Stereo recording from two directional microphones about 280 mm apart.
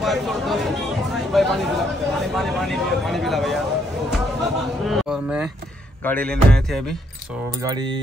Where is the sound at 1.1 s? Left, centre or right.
Centre.